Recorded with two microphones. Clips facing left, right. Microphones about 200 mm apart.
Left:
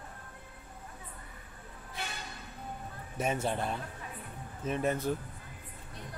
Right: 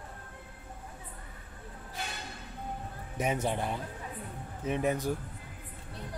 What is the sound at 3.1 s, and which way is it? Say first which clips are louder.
A man's voice: right 1 dB; 15° right (ahead or behind).